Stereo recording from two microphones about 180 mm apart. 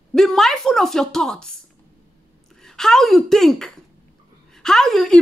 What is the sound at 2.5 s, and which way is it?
A woman's voice, 5° left (ahead or behind).